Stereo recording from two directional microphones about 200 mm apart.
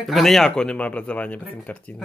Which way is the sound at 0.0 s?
Centre (ahead or behind).